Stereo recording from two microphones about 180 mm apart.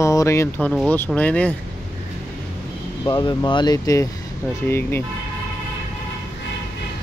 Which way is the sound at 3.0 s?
25° left (ahead or behind).